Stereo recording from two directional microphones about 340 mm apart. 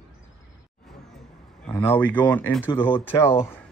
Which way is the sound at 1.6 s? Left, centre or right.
Centre.